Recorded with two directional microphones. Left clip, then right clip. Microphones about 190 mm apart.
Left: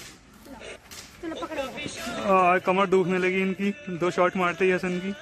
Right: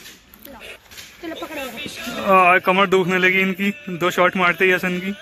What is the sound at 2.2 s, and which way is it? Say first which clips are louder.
A man's voice: right 7 dB; 5° right (ahead or behind).